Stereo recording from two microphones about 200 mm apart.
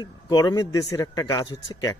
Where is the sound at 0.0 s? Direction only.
20° left (ahead or behind).